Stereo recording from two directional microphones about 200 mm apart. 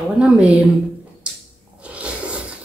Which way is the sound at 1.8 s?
5° right (ahead or behind).